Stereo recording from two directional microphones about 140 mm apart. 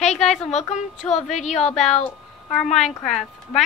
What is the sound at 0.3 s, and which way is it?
A woman's voice, 55° left (ahead or behind).